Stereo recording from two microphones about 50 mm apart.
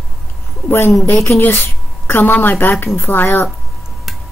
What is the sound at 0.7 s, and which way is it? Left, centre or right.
A woman's voice, left.